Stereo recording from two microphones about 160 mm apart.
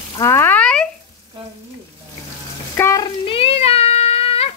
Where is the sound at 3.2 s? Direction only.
35° left (ahead or behind).